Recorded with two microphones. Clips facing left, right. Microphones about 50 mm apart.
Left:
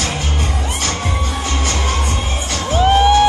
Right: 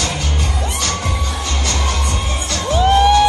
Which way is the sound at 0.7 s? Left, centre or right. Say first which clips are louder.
Left 1 dB; left.